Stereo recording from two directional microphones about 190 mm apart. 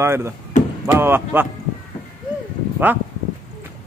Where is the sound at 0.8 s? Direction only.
10° right (ahead or behind).